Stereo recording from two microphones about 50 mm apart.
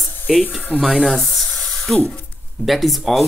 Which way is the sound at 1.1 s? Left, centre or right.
Centre.